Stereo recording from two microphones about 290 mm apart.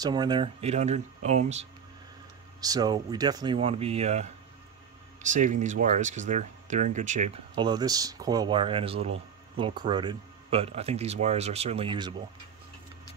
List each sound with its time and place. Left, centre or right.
0.0 s speech: centre
2.6 s speech: centre